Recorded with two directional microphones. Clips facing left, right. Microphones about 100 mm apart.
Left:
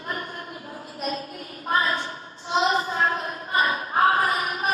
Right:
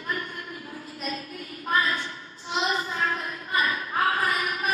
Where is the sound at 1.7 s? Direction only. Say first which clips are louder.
Left 2 dB; 30° left (ahead or behind).